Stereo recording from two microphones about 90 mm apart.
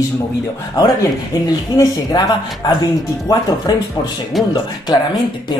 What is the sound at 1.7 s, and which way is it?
A woman's voice, 50° left (ahead or behind).